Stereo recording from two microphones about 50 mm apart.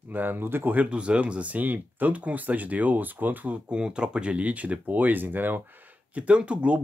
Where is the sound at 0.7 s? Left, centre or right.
Right.